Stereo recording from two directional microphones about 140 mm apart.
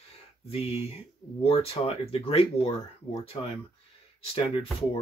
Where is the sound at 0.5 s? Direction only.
45° left (ahead or behind).